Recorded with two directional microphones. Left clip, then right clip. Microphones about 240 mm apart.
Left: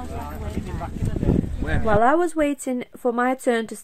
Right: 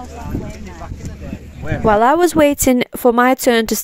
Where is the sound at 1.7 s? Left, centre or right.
Right.